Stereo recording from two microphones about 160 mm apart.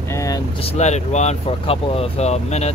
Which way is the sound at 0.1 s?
20° left (ahead or behind).